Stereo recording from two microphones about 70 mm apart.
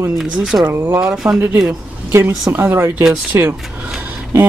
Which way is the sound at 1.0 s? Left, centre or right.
Centre.